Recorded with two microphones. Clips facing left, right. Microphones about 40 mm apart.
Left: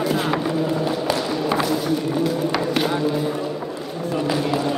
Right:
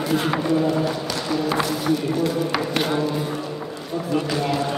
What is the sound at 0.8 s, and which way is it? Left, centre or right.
Speech, centre.